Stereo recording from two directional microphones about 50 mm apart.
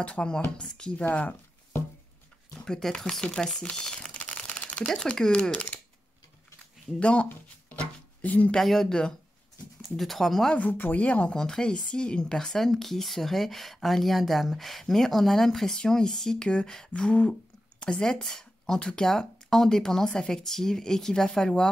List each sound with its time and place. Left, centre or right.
0.0 s speech: centre
1.1 s a sound: left
2.6 s speech: centre
3.6 s crumpling: centre
5.0 s speech: centre
7.0 s speech: left
8.5 s speech: centre
10.5 s speech: left
11.0 s speech: left
11.3 s speech: centre